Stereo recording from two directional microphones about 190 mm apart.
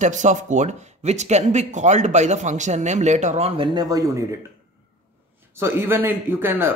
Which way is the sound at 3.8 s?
20° right (ahead or behind).